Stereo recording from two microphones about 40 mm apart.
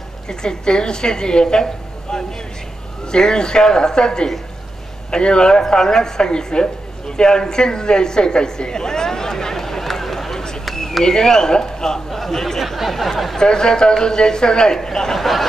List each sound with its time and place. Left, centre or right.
0.3 s a woman's voice: centre
12.1 s a sound: centre
13.4 s speech: centre